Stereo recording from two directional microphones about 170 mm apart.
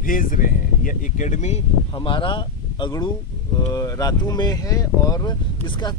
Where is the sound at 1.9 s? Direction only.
30° left (ahead or behind).